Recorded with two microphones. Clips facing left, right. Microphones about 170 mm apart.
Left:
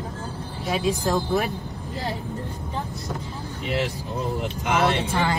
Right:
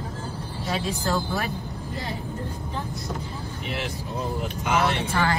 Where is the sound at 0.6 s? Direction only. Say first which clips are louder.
Left 4 dB; 15° left (ahead or behind).